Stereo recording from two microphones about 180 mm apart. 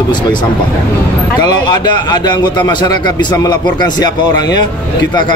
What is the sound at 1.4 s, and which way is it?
A man's voice, 25° left (ahead or behind).